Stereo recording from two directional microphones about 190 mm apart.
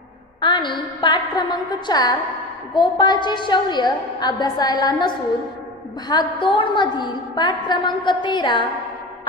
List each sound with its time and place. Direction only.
0.4 s a woman's voice: 25° left (ahead or behind)